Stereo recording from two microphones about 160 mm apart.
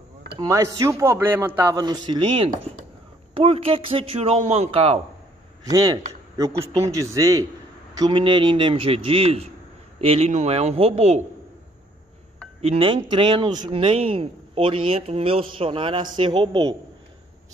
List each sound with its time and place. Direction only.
0.4 s a man's voice: 20° right (ahead or behind); by 5.0 s 40° right (ahead or behind)
5.7 s a man's voice: 25° right (ahead or behind); by 11.2 s 40° right (ahead or behind)
12.6 s speech: 35° right (ahead or behind)